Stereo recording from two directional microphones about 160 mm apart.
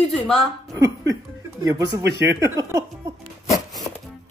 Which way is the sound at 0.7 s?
20° right (ahead or behind).